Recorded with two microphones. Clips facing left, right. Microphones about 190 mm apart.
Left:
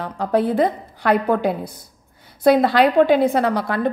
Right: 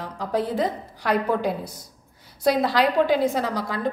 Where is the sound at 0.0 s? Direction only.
60° left (ahead or behind).